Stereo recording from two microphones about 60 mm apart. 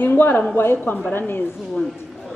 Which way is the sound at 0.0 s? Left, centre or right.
Left.